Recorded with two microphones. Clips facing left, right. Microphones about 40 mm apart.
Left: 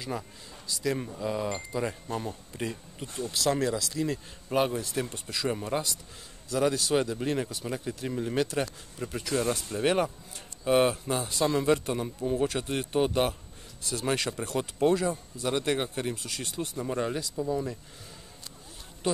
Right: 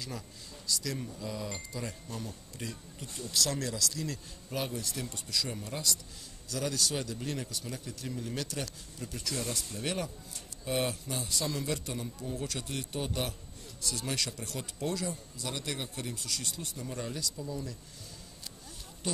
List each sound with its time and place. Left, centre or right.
0.7 s speech: left
19.0 s speech: left